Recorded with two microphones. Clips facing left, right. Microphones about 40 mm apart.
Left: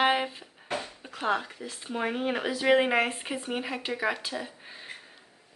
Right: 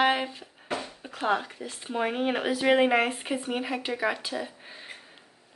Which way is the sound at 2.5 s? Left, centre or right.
Centre.